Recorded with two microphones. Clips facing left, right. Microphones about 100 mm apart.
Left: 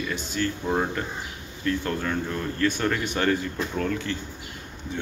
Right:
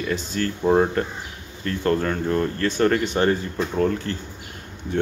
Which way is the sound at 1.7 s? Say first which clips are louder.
Right 4 dB; 40° right (ahead or behind).